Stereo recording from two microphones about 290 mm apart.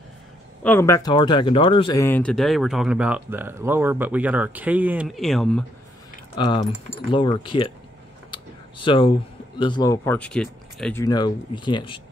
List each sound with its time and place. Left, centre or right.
0.7 s speech: centre
6.3 s speech: centre
8.3 s computer keyboard: centre
9.6 s speech: centre